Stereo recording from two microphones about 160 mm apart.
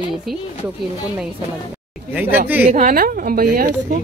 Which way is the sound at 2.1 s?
10° right (ahead or behind).